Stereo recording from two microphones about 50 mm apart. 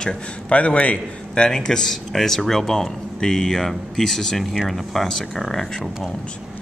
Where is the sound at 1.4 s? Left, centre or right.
Centre.